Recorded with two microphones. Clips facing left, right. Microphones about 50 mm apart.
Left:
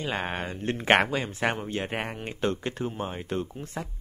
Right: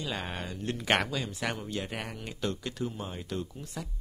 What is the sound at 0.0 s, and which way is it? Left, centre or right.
Speech, left.